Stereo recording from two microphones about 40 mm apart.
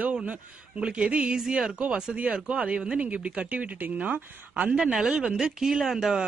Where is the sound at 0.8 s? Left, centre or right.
Right.